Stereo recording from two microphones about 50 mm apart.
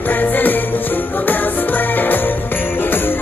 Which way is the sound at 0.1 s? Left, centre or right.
Left.